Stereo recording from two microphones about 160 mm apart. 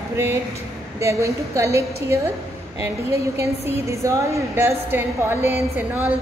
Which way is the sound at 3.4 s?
20° right (ahead or behind).